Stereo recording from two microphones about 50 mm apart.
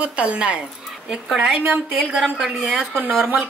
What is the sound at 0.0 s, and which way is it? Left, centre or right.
Speech, right.